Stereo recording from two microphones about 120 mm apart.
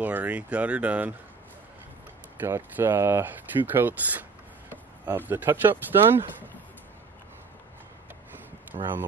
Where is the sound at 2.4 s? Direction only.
15° right (ahead or behind).